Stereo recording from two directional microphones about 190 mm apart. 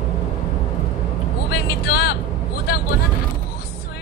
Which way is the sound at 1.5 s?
60° left (ahead or behind).